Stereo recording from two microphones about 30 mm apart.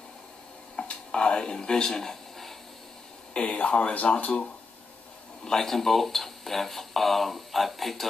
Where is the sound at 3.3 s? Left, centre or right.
Left.